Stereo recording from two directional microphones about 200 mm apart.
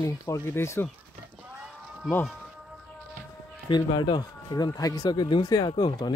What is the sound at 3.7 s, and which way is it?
Speech, 20° left (ahead or behind).